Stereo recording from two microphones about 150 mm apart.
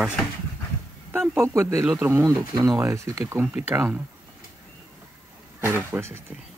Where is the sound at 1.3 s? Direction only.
15° right (ahead or behind).